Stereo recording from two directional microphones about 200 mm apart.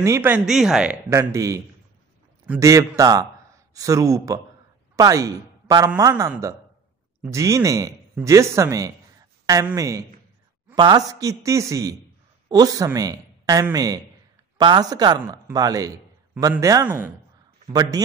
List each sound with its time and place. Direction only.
0.0 s speech: 10° right (ahead or behind)
1.1 s a woman's voice: 15° right (ahead or behind)